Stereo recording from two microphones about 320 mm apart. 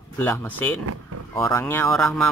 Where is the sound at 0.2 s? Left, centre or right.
Centre.